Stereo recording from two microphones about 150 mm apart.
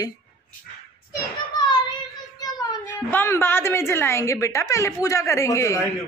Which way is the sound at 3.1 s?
15° left (ahead or behind).